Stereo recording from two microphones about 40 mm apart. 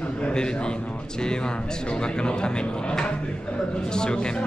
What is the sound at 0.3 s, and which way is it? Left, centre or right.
A man's voice, left.